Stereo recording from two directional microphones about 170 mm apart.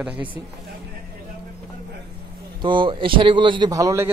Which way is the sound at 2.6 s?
30° right (ahead or behind).